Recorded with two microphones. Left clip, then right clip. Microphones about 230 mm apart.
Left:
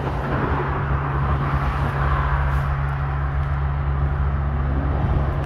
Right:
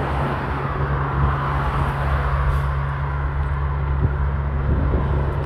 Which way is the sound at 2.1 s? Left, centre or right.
Right.